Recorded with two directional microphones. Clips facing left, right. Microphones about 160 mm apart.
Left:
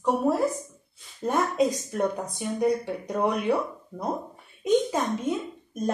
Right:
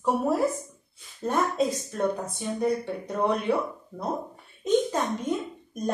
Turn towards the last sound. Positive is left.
turn(degrees=5)  # may be behind; listen again after turning